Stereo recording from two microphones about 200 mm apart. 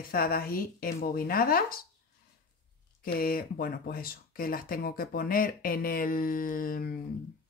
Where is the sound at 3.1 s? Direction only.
45° left (ahead or behind).